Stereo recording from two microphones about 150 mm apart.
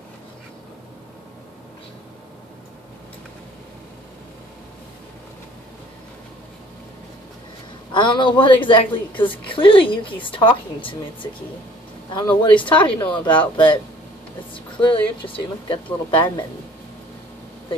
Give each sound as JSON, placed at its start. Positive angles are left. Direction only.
{"t": 7.9, "sound": "a woman's voice", "side_deg": 30}